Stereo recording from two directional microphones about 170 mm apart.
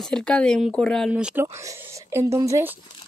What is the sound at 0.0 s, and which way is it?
Speech, 5° left (ahead or behind).